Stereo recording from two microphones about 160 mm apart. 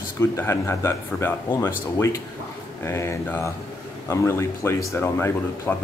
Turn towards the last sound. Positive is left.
turn(degrees=15)  # may be behind; listen again after turning